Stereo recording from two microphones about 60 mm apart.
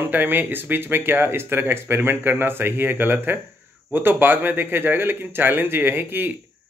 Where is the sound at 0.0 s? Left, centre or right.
Right.